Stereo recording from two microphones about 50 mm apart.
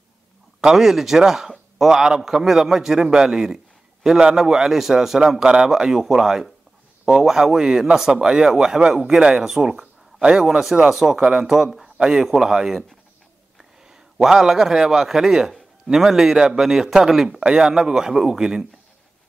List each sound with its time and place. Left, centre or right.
0.6 s a man's voice: centre
5.4 s a man's voice: centre
11.4 s a man's voice: centre